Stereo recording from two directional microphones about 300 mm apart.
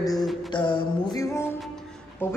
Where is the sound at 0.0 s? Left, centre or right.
Centre.